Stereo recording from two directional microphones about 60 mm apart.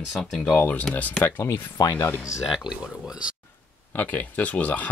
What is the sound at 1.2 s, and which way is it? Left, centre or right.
Speech, left.